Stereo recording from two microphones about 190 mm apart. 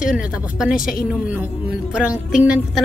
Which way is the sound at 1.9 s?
5° right (ahead or behind).